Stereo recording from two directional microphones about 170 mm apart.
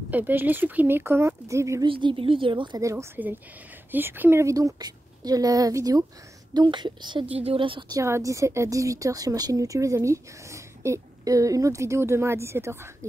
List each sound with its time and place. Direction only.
0.1 s a woman's voice: 10° right (ahead or behind)
1.9 s a woman's voice: 30° right (ahead or behind)
8.0 s a woman's voice: 15° right (ahead or behind)